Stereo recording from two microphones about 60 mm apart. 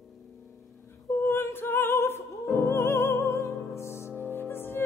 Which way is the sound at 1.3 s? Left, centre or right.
Left.